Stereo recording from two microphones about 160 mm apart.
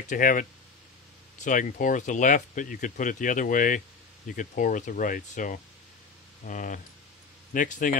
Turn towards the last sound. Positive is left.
turn(degrees=55)  # may be behind; listen again after turning